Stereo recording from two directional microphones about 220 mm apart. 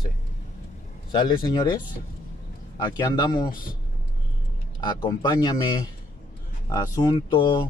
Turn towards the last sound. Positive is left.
turn(degrees=20)  # may be behind; listen again after turning